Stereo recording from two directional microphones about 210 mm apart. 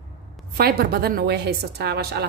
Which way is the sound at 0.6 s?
50° right (ahead or behind).